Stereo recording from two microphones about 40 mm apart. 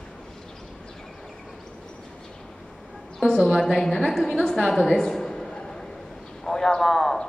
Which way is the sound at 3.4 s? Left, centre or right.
Centre.